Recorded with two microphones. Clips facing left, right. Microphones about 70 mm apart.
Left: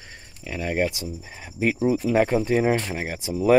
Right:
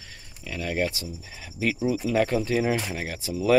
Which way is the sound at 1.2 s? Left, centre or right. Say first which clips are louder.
Left 3 dB; left.